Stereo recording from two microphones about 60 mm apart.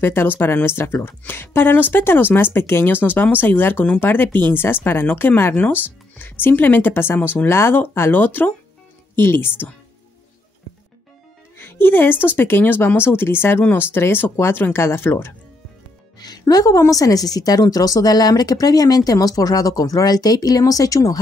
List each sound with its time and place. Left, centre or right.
0.0 s speech: left
7.2 s speech: left
7.4 s speech: left
11.5 s speech: left
16.3 s a woman's voice: left